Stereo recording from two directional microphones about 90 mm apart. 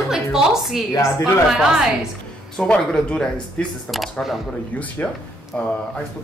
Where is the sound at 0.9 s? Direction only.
30° left (ahead or behind).